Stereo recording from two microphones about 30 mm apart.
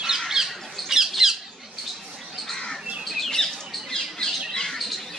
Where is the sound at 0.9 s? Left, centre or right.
Centre.